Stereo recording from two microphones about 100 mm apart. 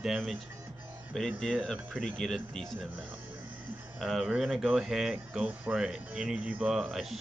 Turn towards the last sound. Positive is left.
turn(degrees=-5)  # may be behind; listen again after turning